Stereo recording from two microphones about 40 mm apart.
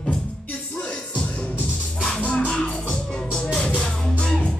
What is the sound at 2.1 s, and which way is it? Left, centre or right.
Music, left.